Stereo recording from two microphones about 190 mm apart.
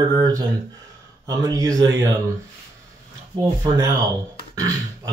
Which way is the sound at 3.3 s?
20° right (ahead or behind).